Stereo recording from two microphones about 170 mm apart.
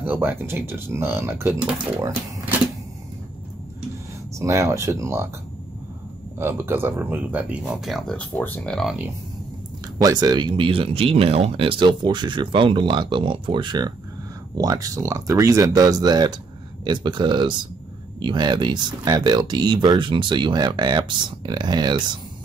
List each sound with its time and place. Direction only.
0.0 s speech: 10° right (ahead or behind)
4.4 s speech: 20° right (ahead or behind)
6.3 s speech: 15° right (ahead or behind); by 8.9 s 5° left (ahead or behind)
10.0 s speech: 25° right (ahead or behind)